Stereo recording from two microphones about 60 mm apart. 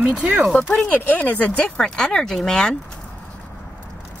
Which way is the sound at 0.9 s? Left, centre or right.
Left.